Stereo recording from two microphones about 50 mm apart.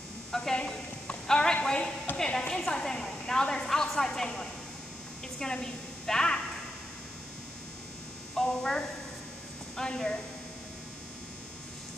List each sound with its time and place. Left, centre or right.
0.3 s a woman's voice: centre
8.4 s a woman's voice: centre